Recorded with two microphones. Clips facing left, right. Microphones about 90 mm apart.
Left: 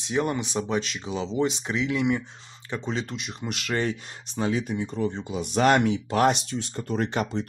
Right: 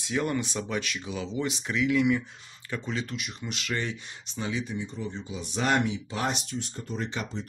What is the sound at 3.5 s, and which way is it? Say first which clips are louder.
Speech: left 5 dB; 45° left (ahead or behind).